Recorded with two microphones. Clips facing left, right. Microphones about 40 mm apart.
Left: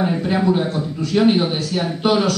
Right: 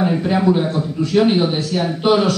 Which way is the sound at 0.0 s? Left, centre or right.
Centre.